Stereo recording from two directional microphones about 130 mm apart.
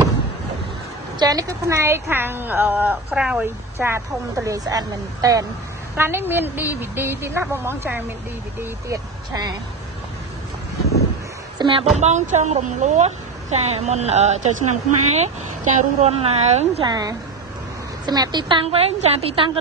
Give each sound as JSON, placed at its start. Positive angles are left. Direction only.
{"t": 1.2, "sound": "speech", "side_deg": -25}
{"t": 5.9, "sound": "speech", "side_deg": -15}
{"t": 11.5, "sound": "a sound", "side_deg": -40}
{"t": 12.0, "sound": "a woman's voice", "side_deg": -65}
{"t": 16.8, "sound": "a woman's voice", "side_deg": -30}